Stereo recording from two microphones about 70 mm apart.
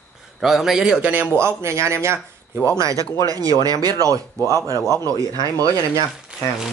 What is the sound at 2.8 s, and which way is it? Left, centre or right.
Speech, right.